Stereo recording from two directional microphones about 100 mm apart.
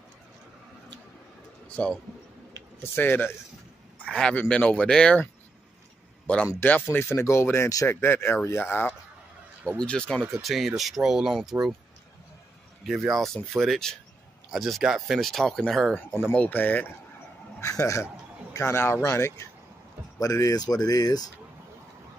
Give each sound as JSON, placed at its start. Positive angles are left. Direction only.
{"t": 1.8, "sound": "speech", "side_deg": 10}
{"t": 6.6, "sound": "speech", "side_deg": 20}
{"t": 9.8, "sound": "speech", "side_deg": 10}
{"t": 12.8, "sound": "speech", "side_deg": 0}
{"t": 16.3, "sound": "speech", "side_deg": 15}
{"t": 17.6, "sound": "speech", "side_deg": 30}